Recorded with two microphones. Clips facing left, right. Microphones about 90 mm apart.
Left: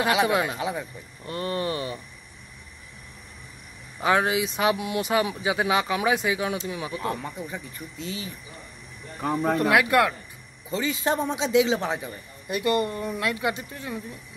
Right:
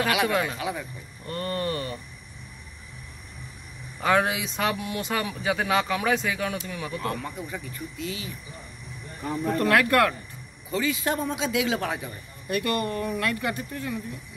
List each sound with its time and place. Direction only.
0.0 s a man's voice: 25° left (ahead or behind)
0.3 s speech: 10° left (ahead or behind)
0.6 s a man's voice: 25° left (ahead or behind)
1.2 s speech: 10° left (ahead or behind)
4.0 s a man's voice: 5° left (ahead or behind); by 7.6 s 20° left (ahead or behind)
8.0 s speech: 30° left (ahead or behind)
9.2 s speech: 90° left
9.6 s speech: 15° left (ahead or behind)
10.7 s a man's voice: 30° left (ahead or behind)